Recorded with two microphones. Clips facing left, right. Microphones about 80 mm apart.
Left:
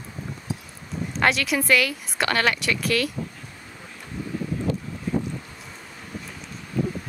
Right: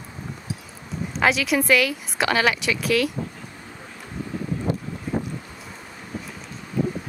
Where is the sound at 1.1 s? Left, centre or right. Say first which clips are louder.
Right 2 dB; centre.